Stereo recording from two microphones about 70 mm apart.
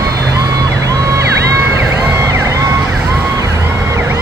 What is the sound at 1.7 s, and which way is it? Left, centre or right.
Emergency vehicle, right.